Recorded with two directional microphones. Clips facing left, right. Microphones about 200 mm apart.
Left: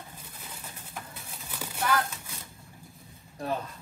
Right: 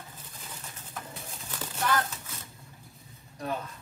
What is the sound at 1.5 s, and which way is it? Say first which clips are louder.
Horse: left 1 dB; 10° left (ahead or behind).